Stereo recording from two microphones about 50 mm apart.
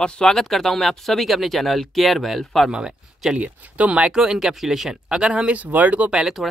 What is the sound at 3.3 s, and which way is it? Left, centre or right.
Speech, right.